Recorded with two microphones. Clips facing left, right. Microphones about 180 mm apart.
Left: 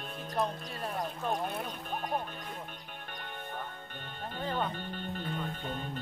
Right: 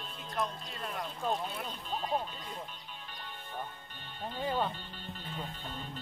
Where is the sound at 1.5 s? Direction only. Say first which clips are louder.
Left 2 dB; 55° left (ahead or behind).